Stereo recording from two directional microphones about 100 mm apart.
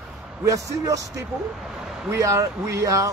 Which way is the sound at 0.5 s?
35° right (ahead or behind).